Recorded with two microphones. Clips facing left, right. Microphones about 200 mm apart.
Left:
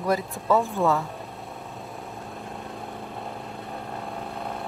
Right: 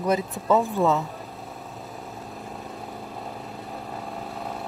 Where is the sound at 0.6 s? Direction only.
Centre (ahead or behind).